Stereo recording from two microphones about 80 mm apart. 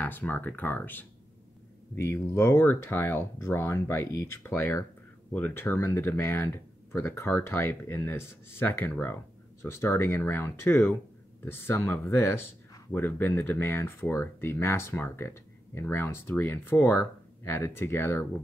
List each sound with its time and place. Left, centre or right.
0.0 s speech: left
2.1 s speech: left